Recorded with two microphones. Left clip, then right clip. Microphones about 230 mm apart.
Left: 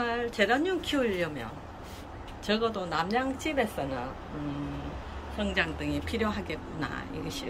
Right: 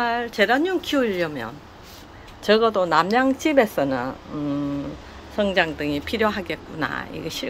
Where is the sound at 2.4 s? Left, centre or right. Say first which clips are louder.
Right 11 dB; centre.